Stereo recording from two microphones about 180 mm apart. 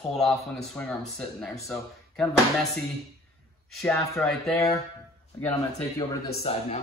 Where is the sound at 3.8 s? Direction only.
15° left (ahead or behind).